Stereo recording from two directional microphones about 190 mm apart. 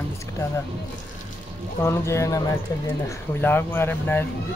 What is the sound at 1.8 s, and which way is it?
Speech, 15° left (ahead or behind).